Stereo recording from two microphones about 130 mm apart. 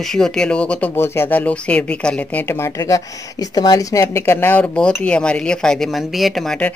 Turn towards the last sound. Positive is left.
turn(degrees=5)  # may be behind; listen again after turning